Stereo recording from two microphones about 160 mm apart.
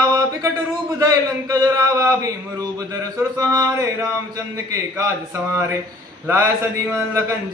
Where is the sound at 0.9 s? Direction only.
20° right (ahead or behind).